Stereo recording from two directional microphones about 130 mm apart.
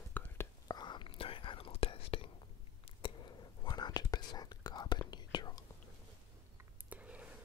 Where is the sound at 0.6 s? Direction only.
35° left (ahead or behind).